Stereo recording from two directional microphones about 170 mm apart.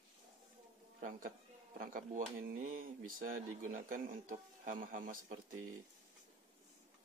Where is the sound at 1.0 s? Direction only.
50° right (ahead or behind).